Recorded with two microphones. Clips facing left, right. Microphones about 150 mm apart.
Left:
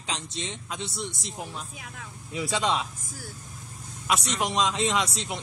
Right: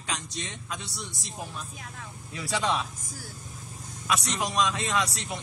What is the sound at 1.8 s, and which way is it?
Speech, centre (ahead or behind).